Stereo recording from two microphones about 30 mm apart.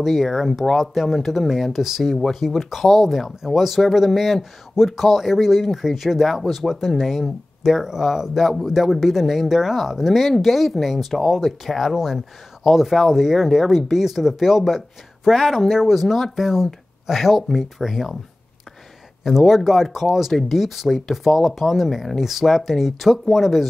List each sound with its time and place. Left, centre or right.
0.0 s speech: centre
2.0 s speech: centre
19.2 s speech: centre